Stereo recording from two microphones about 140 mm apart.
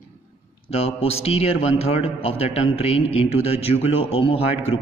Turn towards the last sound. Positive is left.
turn(degrees=45)  # may be behind; listen again after turning